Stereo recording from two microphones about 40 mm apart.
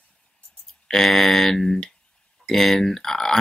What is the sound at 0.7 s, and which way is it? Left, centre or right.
Speech, centre.